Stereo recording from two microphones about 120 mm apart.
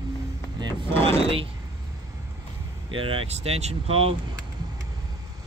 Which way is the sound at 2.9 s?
50° right (ahead or behind).